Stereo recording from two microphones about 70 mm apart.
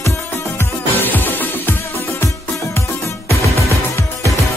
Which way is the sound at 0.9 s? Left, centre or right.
Left.